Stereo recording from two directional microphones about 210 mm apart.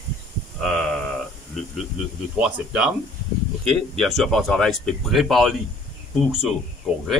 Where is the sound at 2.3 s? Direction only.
5° right (ahead or behind).